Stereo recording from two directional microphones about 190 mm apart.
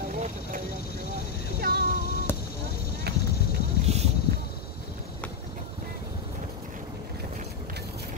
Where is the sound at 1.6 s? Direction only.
55° right (ahead or behind).